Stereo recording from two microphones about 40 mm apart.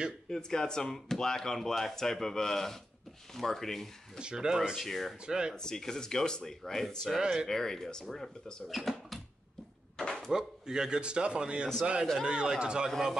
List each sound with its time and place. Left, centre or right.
0.3 s speech: centre
4.2 s a man's voice: right
4.7 s speech: centre
5.2 s a man's voice: right
5.6 s speech: centre
7.2 s speech: centre
7.4 s speech: centre
9.9 s a sound: centre
10.3 s a man's voice: centre